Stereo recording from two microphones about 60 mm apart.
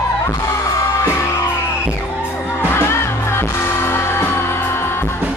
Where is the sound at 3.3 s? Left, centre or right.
Left.